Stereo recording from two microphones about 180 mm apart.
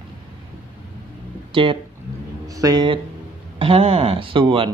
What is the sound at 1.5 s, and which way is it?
A man's voice, 30° right (ahead or behind).